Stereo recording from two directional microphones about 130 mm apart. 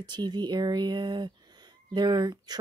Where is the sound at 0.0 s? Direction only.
35° right (ahead or behind).